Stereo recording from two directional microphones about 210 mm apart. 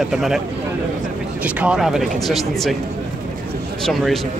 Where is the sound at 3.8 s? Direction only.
Centre (ahead or behind).